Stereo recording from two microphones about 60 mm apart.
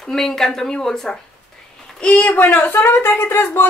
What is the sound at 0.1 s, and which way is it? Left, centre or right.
Speech, centre.